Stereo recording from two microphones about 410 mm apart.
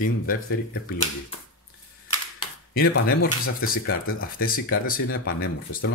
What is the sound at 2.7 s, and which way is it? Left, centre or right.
Speech, left.